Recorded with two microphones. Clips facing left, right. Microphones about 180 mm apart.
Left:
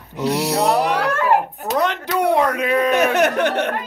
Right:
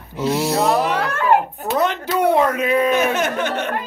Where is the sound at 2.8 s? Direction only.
65° left (ahead or behind).